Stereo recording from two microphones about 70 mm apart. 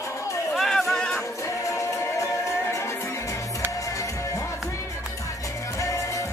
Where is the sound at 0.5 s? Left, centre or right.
Centre.